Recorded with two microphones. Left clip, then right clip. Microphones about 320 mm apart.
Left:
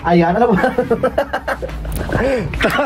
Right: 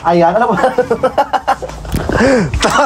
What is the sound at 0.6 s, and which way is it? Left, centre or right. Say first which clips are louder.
Speech: right 4 dB; centre.